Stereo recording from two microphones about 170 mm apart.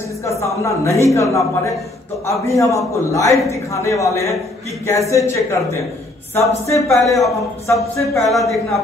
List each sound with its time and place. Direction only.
0.4 s a man's voice: 15° left (ahead or behind)
8.3 s speech: centre (ahead or behind)